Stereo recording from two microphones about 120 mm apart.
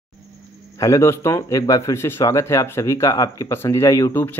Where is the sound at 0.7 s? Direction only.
25° left (ahead or behind).